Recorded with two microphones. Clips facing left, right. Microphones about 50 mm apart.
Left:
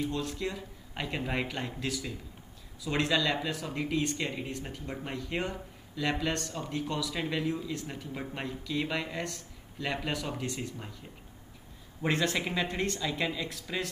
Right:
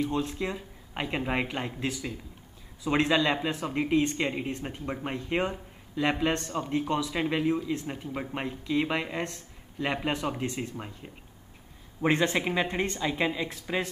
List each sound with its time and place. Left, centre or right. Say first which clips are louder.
0.1 s speech: right 4 dB; right